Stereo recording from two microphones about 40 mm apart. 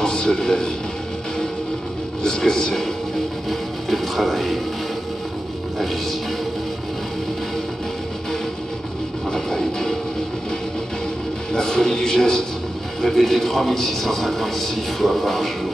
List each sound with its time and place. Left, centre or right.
0.0 s a man's voice: centre
2.2 s a man's voice: centre
3.4 s music: centre
9.3 s music: centre
11.5 s a man's voice: centre